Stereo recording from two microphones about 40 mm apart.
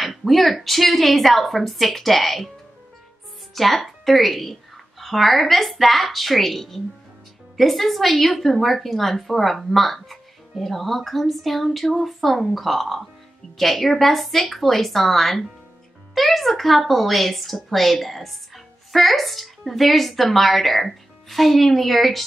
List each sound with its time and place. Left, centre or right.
0.0 s a woman's voice: centre
3.5 s a woman's voice: centre